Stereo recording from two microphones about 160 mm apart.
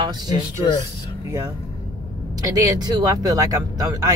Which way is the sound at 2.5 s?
20° right (ahead or behind).